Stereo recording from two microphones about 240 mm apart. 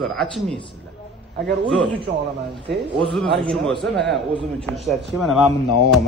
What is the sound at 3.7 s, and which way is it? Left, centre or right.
Speech, right.